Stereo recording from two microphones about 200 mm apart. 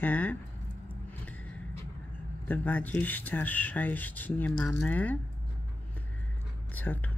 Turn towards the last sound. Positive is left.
turn(degrees=10)  # may be behind; listen again after turning